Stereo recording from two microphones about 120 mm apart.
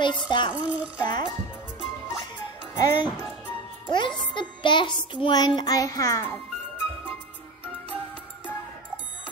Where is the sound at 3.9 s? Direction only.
40° left (ahead or behind).